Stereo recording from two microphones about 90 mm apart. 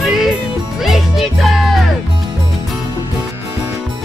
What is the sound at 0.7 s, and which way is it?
Music, 5° right (ahead or behind).